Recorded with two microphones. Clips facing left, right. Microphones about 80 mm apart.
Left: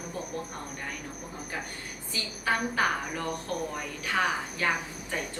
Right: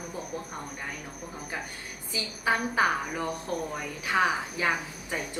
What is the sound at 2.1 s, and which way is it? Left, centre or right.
A woman's voice, centre.